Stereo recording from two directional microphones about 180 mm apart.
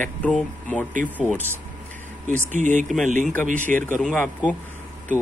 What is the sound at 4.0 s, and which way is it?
Speech, 5° left (ahead or behind).